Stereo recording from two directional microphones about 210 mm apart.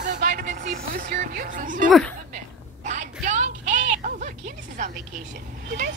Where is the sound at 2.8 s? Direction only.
35° right (ahead or behind).